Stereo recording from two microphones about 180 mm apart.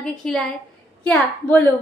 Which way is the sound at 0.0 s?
5° left (ahead or behind).